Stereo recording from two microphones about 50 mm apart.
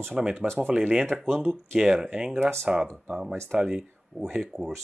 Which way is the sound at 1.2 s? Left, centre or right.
Centre.